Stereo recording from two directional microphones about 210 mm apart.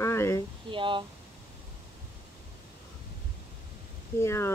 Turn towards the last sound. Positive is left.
turn(degrees=10)  # may be behind; listen again after turning